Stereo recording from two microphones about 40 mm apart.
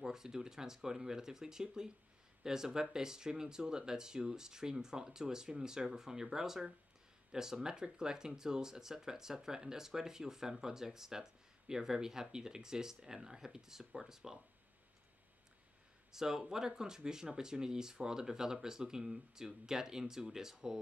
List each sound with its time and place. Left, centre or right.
0.0 s speech: centre
16.1 s speech: centre